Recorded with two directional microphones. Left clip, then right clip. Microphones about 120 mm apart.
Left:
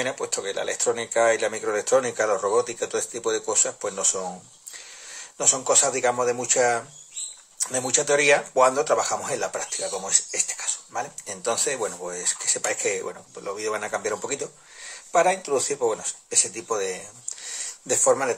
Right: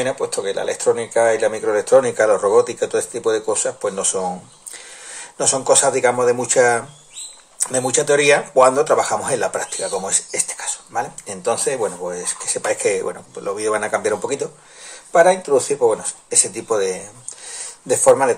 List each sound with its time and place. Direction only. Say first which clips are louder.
0.0 s speech: right 7 dB; 25° left (ahead or behind)
5.4 s speech: right 6 dB; 15° left (ahead or behind)
14.2 s speech: right 7 dB; 15° left (ahead or behind)
17.5 s a sound: right 7 dB; 25° left (ahead or behind)